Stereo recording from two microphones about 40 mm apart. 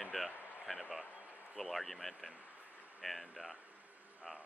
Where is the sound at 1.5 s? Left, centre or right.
Centre.